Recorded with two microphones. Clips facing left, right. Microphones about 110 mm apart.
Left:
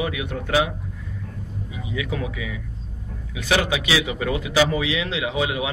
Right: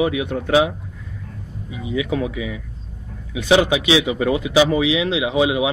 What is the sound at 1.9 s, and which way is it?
A man's voice, 25° right (ahead or behind).